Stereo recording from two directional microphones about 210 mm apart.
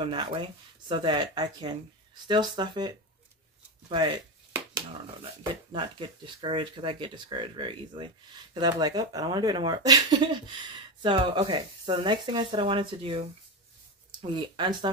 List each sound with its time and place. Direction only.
0.0 s speech: 25° right (ahead or behind)
5.2 s speech: 25° right (ahead or behind)